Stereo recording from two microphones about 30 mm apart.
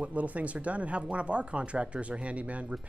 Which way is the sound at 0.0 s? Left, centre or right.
Right.